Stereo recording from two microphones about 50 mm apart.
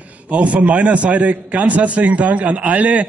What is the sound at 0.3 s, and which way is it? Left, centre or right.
A man's voice, right.